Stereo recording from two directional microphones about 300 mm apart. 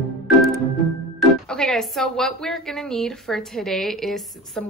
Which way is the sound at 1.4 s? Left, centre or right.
Centre.